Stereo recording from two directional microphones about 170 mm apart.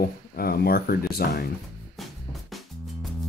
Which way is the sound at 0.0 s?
60° left (ahead or behind).